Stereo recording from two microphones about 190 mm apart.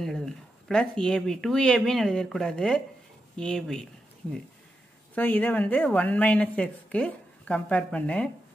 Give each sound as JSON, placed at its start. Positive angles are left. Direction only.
{"t": 0.0, "sound": "speech", "side_deg": 0}
{"t": 5.1, "sound": "a woman's voice", "side_deg": 10}